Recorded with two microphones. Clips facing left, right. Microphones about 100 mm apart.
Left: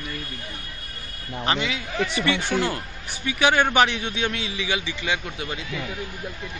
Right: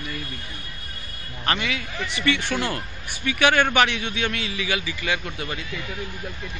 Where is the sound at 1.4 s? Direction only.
20° left (ahead or behind).